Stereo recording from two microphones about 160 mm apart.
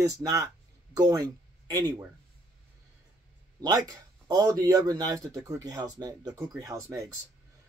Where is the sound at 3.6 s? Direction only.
25° right (ahead or behind).